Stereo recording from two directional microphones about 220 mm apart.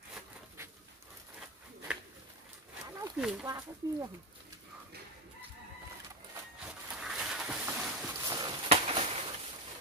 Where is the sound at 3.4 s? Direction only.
15° right (ahead or behind).